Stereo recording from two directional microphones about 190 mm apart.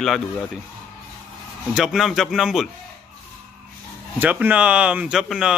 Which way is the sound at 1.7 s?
5° right (ahead or behind).